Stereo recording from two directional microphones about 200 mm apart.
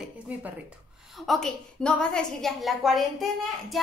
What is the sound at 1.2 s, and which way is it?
A woman's voice, 5° left (ahead or behind).